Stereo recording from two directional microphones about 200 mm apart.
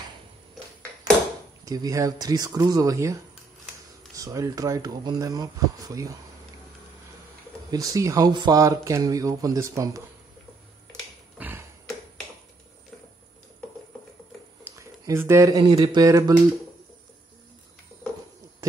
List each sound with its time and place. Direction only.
1.6 s speech: 15° right (ahead or behind)
4.2 s speech: 15° right (ahead or behind)
7.7 s speech: 20° right (ahead or behind)
10.9 s a sound: 10° right (ahead or behind)
14.6 s a sound: 15° right (ahead or behind)
15.7 s speech: 20° right (ahead or behind)